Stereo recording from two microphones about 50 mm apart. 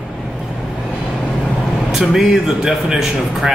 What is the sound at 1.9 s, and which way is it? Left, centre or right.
Speech, centre.